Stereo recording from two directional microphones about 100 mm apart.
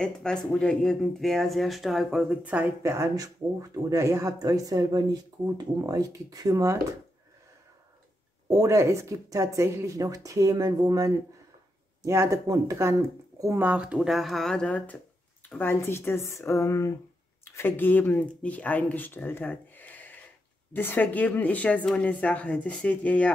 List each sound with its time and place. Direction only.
0.0 s speech: 5° left (ahead or behind)
2.4 s speech: 15° right (ahead or behind)
2.8 s speech: 30° right (ahead or behind)
8.5 s speech: 35° right (ahead or behind)
13.6 s speech: 15° right (ahead or behind); by 15.0 s 10° left (ahead or behind)
15.5 s speech: 20° left (ahead or behind)